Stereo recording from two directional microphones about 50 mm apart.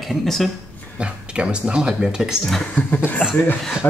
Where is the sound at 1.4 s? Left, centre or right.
Right.